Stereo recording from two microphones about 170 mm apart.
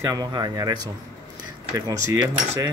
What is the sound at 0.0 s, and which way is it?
Speech, 20° right (ahead or behind).